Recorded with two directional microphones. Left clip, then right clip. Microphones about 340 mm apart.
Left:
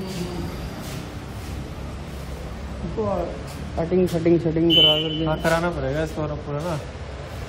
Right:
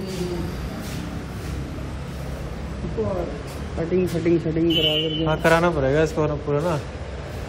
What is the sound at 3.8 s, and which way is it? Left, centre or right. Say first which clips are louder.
Speech: left 2 dB; left.